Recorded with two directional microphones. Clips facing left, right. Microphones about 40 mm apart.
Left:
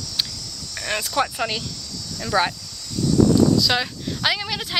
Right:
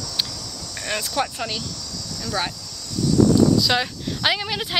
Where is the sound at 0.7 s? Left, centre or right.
Centre.